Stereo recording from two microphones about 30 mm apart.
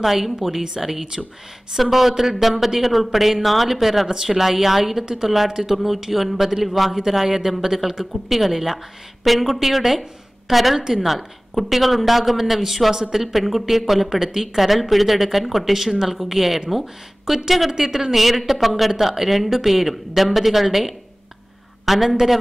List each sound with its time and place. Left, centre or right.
0.0 s speech: centre
5.0 s a woman's voice: centre